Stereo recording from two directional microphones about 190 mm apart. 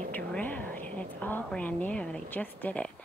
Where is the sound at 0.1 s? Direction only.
10° left (ahead or behind).